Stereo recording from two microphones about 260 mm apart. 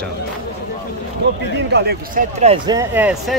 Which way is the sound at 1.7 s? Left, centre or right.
Right.